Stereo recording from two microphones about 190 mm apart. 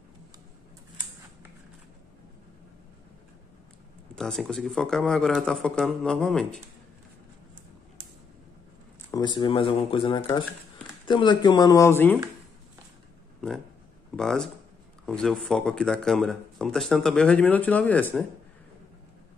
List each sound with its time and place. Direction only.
4.1 s speech: centre (ahead or behind)
9.1 s speech: 25° left (ahead or behind)
14.1 s speech: centre (ahead or behind)